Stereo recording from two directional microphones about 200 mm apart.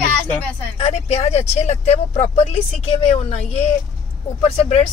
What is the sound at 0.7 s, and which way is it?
Speech, 30° left (ahead or behind).